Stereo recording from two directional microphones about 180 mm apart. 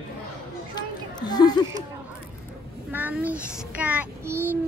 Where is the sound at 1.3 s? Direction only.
25° left (ahead or behind).